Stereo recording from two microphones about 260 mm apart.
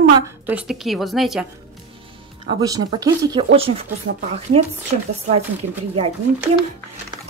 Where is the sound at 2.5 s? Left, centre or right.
Centre.